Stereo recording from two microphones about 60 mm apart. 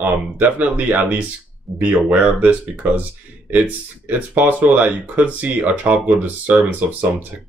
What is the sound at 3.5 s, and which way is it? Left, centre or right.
Speech, right.